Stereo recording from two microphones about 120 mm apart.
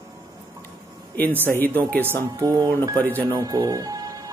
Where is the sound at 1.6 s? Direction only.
15° left (ahead or behind).